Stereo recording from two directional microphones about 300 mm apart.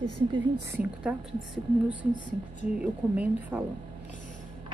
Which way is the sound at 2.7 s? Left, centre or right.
Centre.